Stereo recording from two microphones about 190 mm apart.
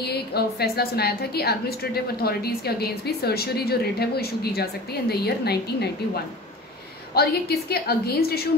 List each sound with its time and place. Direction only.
0.0 s a woman's voice: 60° left (ahead or behind)
7.2 s a woman's voice: 55° left (ahead or behind)